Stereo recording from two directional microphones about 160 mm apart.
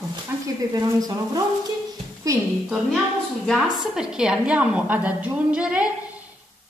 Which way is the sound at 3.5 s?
5° right (ahead or behind).